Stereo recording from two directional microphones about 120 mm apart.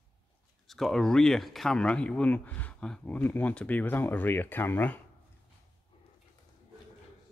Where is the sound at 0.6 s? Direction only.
Centre (ahead or behind).